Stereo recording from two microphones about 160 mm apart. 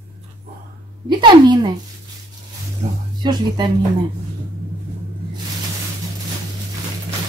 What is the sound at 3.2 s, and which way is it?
Speech, 25° right (ahead or behind).